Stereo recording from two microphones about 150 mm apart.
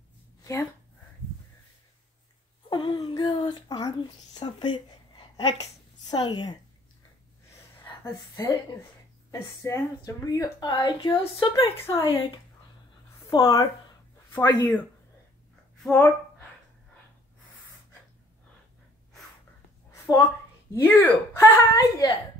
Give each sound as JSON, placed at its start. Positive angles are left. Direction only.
{"t": 0.4, "sound": "a sound", "side_deg": 20}
{"t": 2.7, "sound": "speech", "side_deg": 30}
{"t": 8.0, "sound": "speech", "side_deg": 20}
{"t": 11.6, "sound": "speech", "side_deg": 15}
{"t": 13.3, "sound": "speech", "side_deg": 25}
{"t": 19.9, "sound": "a sound", "side_deg": 20}
{"t": 20.7, "sound": "speech", "side_deg": 10}